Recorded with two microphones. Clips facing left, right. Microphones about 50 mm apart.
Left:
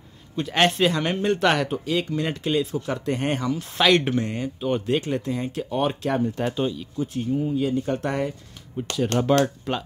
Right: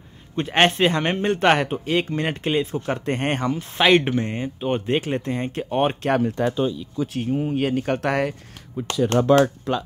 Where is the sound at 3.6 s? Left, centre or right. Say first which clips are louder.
Right 2 dB; centre; by 6.1 s right.